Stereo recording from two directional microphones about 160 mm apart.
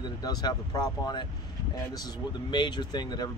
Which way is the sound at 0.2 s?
25° left (ahead or behind).